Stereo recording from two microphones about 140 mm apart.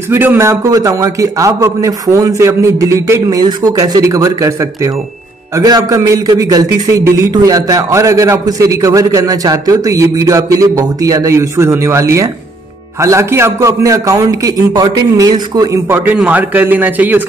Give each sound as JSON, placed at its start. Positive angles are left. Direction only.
{"t": 0.1, "sound": "a man's voice", "side_deg": -15}
{"t": 15.9, "sound": "a man's voice", "side_deg": -15}